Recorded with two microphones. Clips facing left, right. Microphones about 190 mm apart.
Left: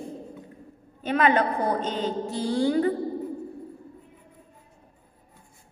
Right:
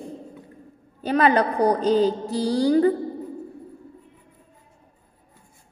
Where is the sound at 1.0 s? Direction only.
35° right (ahead or behind).